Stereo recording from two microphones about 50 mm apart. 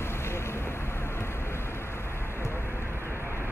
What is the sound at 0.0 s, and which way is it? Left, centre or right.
Vehicle, left.